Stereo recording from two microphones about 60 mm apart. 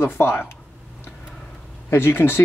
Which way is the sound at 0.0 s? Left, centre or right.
Left.